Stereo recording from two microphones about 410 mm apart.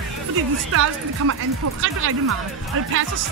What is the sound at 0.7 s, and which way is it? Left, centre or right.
Speech, right.